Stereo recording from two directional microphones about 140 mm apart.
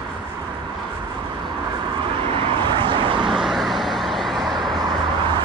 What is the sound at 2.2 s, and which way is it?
Vehicle, 35° right (ahead or behind).